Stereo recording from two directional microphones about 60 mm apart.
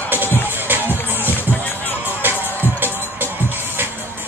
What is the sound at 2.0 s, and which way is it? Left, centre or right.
Music, right.